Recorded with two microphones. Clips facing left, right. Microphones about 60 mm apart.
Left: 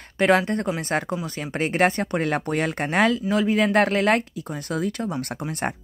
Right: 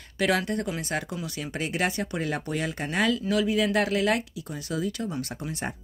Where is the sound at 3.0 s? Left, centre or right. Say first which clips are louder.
Left 4 dB; left.